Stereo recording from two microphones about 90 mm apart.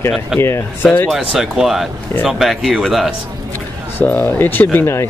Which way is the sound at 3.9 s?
20° left (ahead or behind).